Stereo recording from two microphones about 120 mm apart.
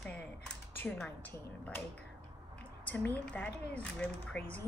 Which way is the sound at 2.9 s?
10° left (ahead or behind).